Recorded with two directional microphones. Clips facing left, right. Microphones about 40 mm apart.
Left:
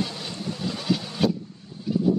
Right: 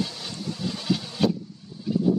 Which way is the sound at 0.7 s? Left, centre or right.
Centre.